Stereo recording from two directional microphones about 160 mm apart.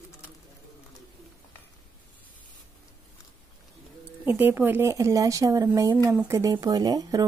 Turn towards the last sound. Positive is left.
turn(degrees=-25)  # may be behind; listen again after turning